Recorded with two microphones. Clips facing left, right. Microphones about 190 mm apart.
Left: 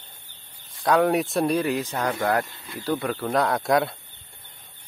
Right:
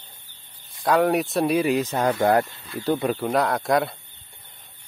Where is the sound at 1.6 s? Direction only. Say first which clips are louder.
Right 4 dB; 20° right (ahead or behind).